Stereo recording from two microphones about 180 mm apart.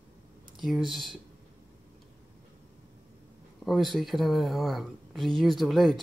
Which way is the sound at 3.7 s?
Centre (ahead or behind).